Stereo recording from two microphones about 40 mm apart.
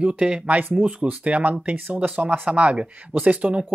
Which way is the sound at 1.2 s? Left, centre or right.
Right.